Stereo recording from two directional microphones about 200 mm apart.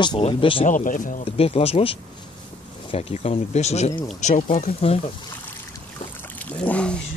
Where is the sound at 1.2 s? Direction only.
30° left (ahead or behind).